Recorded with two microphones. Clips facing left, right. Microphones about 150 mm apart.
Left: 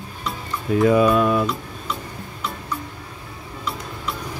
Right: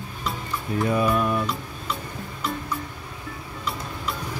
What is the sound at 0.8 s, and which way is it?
Speech, 90° left.